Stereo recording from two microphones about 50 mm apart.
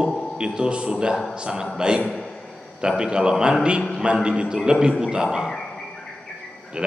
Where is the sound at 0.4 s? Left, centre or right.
Centre.